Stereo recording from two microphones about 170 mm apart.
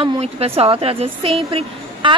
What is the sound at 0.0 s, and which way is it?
A woman's voice, 35° right (ahead or behind).